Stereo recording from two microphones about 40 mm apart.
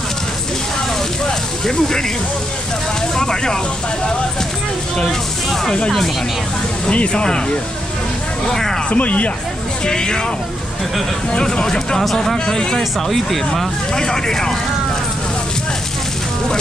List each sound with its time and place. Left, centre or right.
1.7 s speech: centre
3.2 s speech: centre
4.9 s speech: centre
6.9 s speech: left
8.5 s speech: centre
8.9 s speech: left
9.8 s speech: centre
11.3 s speech: left
13.9 s speech: centre